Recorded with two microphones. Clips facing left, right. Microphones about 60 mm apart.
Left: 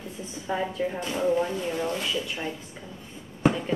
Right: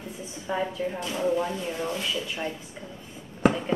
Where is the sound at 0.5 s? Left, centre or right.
Centre.